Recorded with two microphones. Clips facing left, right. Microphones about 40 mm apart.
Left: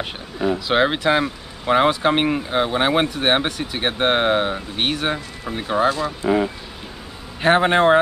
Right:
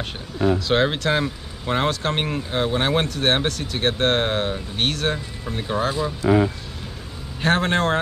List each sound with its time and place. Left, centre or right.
0.7 s speech: centre
5.9 s speech: centre
7.4 s speech: centre